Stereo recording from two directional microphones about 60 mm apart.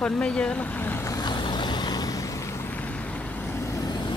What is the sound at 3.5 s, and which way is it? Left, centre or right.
Vehicle, left.